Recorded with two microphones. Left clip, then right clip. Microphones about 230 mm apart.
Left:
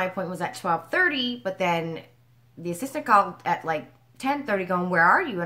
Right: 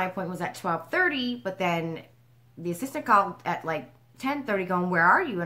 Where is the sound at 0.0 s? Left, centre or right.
Centre.